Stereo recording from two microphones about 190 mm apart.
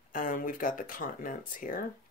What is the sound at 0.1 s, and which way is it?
Speech, 45° left (ahead or behind).